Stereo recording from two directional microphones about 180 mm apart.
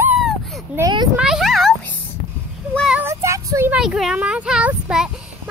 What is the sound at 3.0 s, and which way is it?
Child singing, 15° right (ahead or behind).